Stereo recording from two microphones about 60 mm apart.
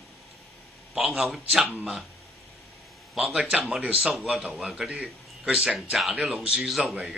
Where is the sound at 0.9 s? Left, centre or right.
Centre.